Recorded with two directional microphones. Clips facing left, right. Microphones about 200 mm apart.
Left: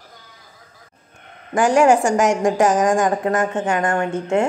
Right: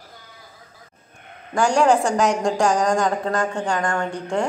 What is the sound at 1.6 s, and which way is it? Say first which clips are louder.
A woman's voice: left 3 dB; 15° left (ahead or behind).